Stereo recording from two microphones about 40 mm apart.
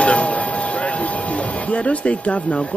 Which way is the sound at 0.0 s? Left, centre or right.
Left.